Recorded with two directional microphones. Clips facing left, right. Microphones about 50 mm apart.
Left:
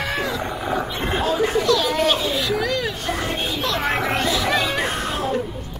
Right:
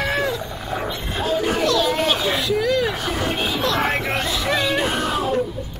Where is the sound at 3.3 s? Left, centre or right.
Right.